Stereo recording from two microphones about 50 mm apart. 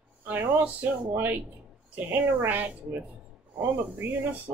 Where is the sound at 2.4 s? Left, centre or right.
Right.